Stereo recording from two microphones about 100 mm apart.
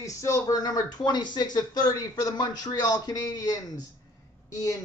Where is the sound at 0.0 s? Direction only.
30° left (ahead or behind).